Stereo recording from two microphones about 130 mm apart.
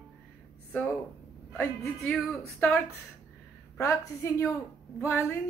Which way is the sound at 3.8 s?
20° left (ahead or behind).